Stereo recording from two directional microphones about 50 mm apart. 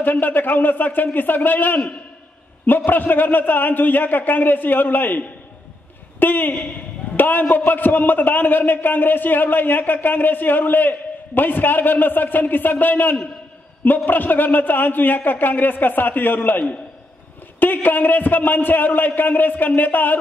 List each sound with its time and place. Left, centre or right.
0.0 s a man's voice: left
17.8 s a man's voice: left